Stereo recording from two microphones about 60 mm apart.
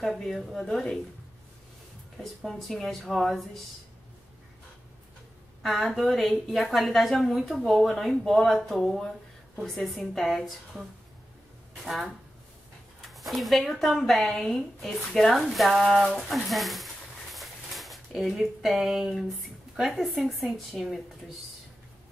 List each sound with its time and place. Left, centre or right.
0.0 s a woman's voice: centre
2.2 s a woman's voice: centre
5.6 s a woman's voice: centre
11.8 s a woman's voice: centre